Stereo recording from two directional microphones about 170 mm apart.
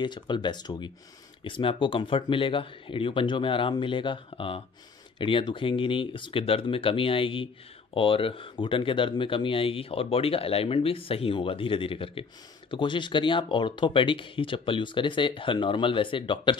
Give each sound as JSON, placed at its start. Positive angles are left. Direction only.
{"t": 0.0, "sound": "speech", "side_deg": 25}